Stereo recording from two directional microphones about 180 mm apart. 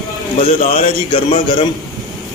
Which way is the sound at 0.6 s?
35° left (ahead or behind).